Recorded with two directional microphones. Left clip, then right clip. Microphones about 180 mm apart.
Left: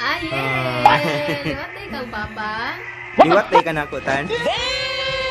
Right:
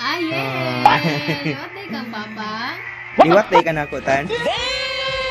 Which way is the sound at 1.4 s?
30° left (ahead or behind).